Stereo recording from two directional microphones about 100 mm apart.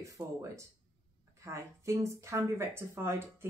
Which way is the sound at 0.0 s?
30° right (ahead or behind).